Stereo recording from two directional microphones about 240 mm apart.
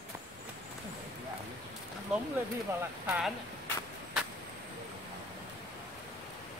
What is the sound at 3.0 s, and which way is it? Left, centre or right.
Speech, centre.